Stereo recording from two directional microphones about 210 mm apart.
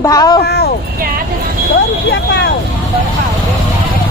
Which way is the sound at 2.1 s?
55° left (ahead or behind).